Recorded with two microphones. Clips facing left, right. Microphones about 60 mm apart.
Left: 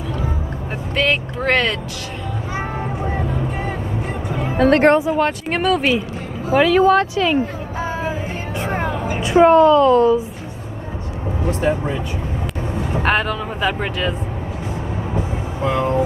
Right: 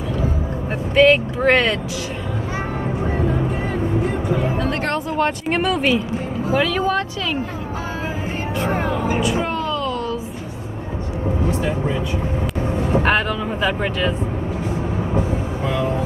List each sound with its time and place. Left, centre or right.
0.9 s speech: centre
4.6 s speech: left
4.9 s speech: centre
8.5 s music: left
9.2 s a woman's voice: left
13.0 s speech: centre
15.6 s vehicle: left